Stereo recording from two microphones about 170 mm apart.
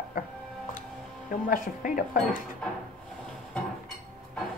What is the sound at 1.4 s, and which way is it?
Speech, 50° left (ahead or behind).